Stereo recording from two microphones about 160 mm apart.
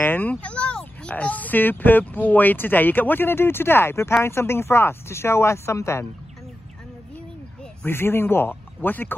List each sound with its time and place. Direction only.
0.0 s speech: 10° left (ahead or behind)
7.8 s speech: 15° left (ahead or behind)